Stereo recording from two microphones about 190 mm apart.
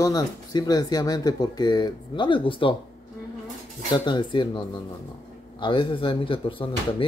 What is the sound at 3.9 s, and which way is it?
Speech, 25° left (ahead or behind).